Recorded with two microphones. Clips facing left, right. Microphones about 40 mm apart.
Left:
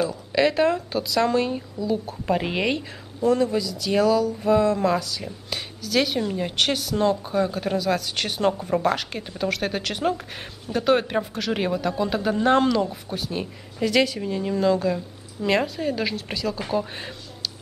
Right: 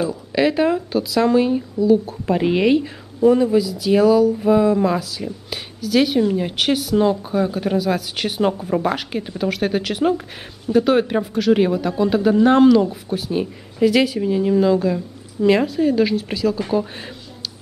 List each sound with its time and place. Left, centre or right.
0.0 s speech: centre